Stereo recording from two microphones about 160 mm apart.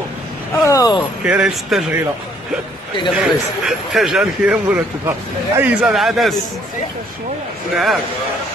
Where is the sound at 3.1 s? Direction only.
5° right (ahead or behind).